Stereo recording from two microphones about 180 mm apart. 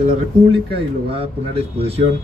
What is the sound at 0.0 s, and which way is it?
Speech, 30° right (ahead or behind).